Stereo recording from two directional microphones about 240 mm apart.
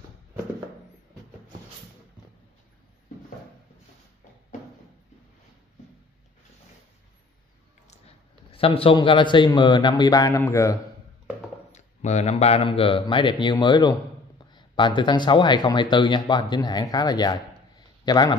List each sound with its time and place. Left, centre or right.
8.5 s a man's voice: left
11.7 s speech: left